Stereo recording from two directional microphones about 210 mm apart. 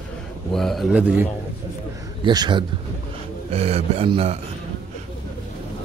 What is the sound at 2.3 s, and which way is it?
Speech, 20° right (ahead or behind).